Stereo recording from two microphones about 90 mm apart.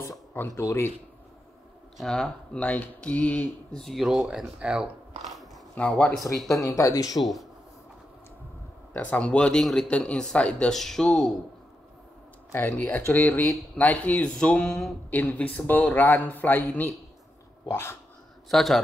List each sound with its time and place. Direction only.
0.3 s speech: 25° left (ahead or behind)
2.0 s speech: 5° left (ahead or behind)
3.8 s speech: centre (ahead or behind)
5.2 s a sound: centre (ahead or behind)
5.8 s speech: 15° left (ahead or behind)
6.5 s speech: 40° left (ahead or behind)
7.2 s speech: centre (ahead or behind)
8.9 s speech: 15° left (ahead or behind)
12.5 s a man's voice: 25° left (ahead or behind)
18.5 s speech: centre (ahead or behind)